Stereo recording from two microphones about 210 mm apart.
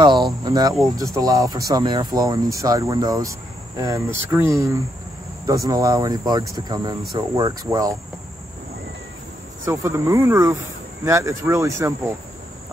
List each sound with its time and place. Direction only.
0.0 s cricket: 20° right (ahead or behind)
1.1 s speech: 15° right (ahead or behind)
9.7 s speech: 15° right (ahead or behind)